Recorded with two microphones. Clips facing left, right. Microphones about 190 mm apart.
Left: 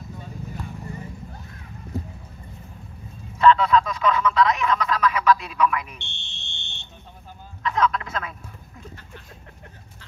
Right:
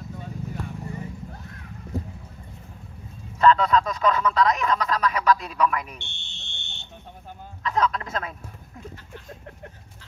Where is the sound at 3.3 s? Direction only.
40° right (ahead or behind).